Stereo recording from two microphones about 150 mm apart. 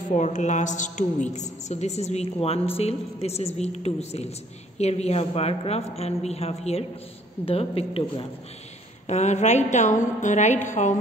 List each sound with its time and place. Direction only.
0.1 s a woman's voice: 55° left (ahead or behind)